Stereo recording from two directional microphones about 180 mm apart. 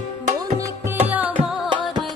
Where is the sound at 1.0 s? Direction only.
10° right (ahead or behind).